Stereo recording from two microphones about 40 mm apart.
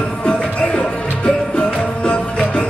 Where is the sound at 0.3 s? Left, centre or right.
Left.